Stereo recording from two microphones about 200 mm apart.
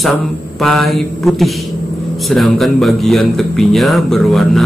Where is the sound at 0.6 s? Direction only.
Centre (ahead or behind).